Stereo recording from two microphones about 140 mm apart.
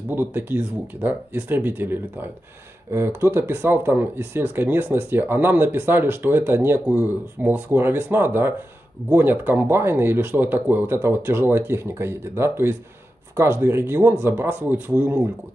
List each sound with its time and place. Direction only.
0.1 s speech: 15° right (ahead or behind)